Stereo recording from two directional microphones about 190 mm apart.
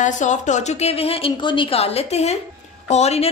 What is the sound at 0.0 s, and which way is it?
A woman's voice, 40° left (ahead or behind).